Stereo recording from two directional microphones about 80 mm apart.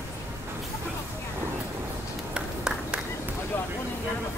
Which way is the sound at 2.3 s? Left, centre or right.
Centre.